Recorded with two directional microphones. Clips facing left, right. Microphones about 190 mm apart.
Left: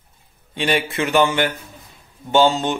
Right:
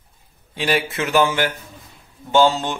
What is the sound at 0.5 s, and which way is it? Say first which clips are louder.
A man's voice: left 1 dB; 5° right (ahead or behind).